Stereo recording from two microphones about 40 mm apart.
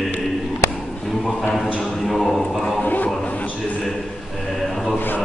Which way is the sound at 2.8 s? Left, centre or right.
Left.